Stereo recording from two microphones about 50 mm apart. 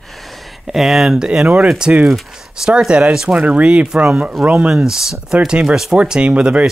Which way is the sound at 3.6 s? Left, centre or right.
Right.